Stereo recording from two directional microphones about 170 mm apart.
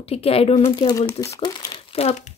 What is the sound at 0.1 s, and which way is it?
Speech, 35° left (ahead or behind).